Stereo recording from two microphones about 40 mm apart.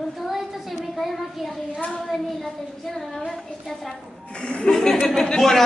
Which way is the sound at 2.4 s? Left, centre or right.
Centre.